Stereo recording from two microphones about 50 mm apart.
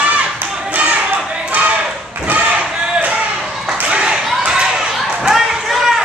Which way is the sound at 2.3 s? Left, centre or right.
Right.